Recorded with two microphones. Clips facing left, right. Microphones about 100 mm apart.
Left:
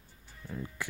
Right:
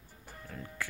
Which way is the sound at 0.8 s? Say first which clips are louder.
Left 3 dB; 20° left (ahead or behind).